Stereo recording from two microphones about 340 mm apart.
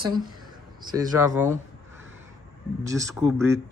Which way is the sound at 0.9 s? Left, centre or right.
Centre.